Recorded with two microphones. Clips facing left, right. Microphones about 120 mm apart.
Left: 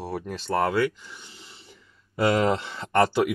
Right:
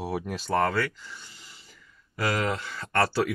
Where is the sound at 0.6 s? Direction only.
15° left (ahead or behind).